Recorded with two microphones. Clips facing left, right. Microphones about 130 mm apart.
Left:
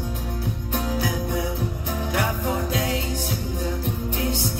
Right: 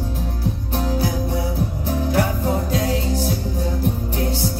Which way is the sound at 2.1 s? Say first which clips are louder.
Right 4 dB; 35° right (ahead or behind).